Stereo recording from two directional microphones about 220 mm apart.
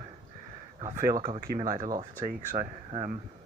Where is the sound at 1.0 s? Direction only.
20° right (ahead or behind).